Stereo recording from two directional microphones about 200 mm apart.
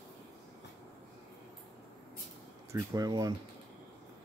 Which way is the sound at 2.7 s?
15° right (ahead or behind).